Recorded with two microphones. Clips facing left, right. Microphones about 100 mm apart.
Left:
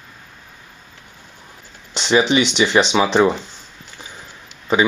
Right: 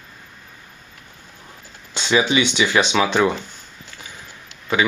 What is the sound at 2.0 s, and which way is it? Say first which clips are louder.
Speech: left 2 dB; 25° left (ahead or behind).